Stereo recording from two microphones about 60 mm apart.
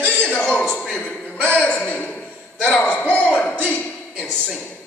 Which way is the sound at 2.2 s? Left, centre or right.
Centre.